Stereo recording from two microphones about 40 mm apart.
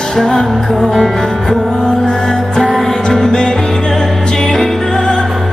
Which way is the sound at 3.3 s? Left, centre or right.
Centre.